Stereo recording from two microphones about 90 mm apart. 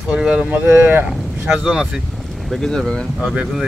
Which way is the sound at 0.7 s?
25° right (ahead or behind).